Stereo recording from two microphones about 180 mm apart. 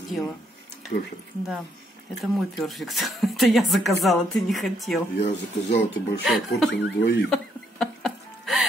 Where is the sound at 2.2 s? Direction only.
Centre (ahead or behind).